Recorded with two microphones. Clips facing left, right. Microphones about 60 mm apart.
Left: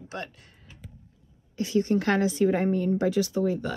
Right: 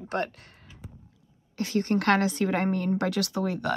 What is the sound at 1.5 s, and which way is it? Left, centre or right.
A woman's voice, right.